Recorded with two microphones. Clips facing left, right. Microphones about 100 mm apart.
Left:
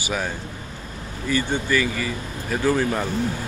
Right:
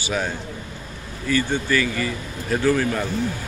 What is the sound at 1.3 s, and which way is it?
Speech, 20° left (ahead or behind).